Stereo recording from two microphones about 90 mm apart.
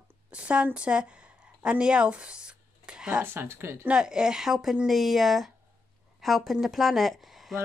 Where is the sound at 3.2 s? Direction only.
25° right (ahead or behind).